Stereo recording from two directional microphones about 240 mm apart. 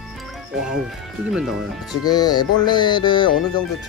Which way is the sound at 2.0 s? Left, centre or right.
Centre.